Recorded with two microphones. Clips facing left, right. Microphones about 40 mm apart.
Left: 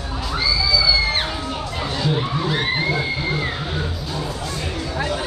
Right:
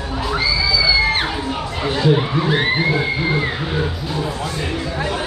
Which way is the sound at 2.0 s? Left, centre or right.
Centre.